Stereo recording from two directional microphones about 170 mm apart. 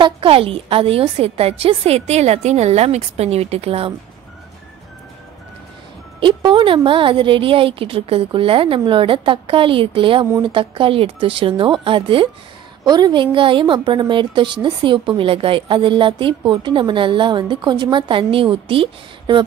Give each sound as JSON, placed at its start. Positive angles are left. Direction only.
{"t": 0.0, "sound": "speech", "side_deg": -30}
{"t": 6.1, "sound": "a woman's voice", "side_deg": -30}